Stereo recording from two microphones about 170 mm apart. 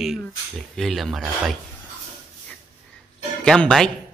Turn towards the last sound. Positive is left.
turn(degrees=5)  # may be behind; listen again after turning